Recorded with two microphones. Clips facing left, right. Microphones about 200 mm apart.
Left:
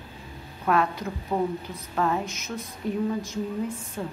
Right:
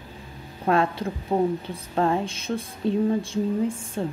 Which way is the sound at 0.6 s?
30° right (ahead or behind).